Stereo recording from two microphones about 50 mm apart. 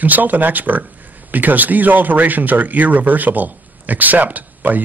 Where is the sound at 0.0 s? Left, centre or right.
Right.